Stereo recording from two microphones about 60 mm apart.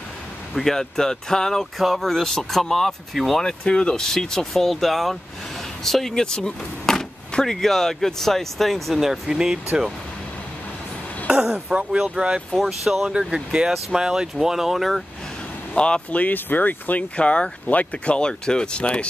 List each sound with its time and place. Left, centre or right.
0.6 s speech: centre
11.2 s speech: centre
12.5 s speech: centre
13.1 s speech: centre
15.7 s speech: centre